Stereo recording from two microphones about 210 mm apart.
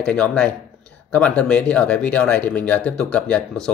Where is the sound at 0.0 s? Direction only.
5° left (ahead or behind).